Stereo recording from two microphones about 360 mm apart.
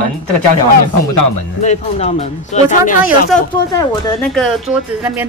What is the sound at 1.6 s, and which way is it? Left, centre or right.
Speech, centre.